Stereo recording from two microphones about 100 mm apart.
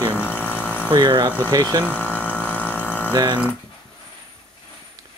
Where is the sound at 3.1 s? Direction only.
40° right (ahead or behind).